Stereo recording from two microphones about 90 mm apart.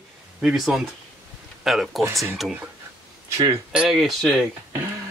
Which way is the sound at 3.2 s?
35° right (ahead or behind).